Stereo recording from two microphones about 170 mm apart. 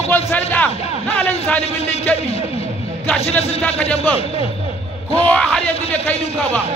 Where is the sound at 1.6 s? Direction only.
40° left (ahead or behind).